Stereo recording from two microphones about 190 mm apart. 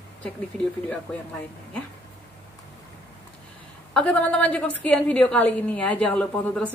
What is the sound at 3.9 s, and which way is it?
A woman's voice, 5° left (ahead or behind).